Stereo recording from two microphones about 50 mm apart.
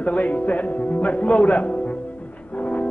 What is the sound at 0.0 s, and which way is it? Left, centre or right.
Music, left.